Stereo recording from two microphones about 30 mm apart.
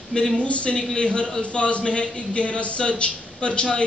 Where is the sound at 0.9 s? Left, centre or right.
Left.